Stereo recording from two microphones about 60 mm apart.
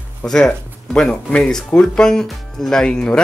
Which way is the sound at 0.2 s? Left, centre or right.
Centre.